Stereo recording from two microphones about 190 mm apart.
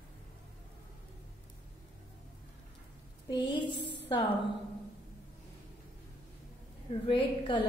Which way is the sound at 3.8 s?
65° left (ahead or behind).